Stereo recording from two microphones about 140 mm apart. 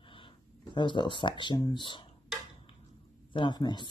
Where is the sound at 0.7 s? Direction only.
35° left (ahead or behind).